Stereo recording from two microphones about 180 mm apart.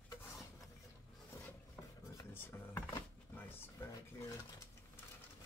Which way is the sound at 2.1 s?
15° left (ahead or behind).